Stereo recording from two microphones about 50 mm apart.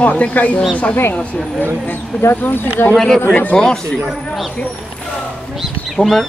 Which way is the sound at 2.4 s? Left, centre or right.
Left.